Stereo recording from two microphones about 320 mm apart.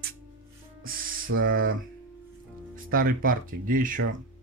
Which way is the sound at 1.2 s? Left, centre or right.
Right.